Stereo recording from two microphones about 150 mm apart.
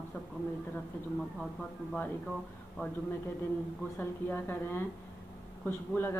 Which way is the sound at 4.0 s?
15° left (ahead or behind).